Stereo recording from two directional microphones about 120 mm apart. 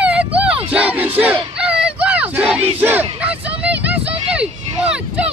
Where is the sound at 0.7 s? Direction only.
10° right (ahead or behind).